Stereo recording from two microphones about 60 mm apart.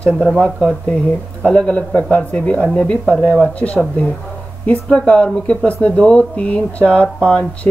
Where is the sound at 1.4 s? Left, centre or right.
Centre.